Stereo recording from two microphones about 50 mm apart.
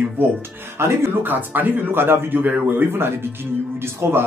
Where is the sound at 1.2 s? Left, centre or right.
Right.